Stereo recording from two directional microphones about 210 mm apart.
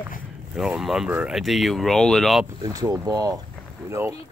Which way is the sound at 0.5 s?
Centre (ahead or behind).